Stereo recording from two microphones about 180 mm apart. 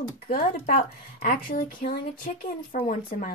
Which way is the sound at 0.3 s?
55° left (ahead or behind).